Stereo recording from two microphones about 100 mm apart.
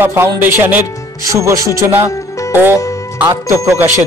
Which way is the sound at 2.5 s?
20° right (ahead or behind).